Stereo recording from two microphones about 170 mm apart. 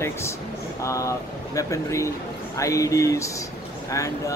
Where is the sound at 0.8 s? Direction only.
20° left (ahead or behind).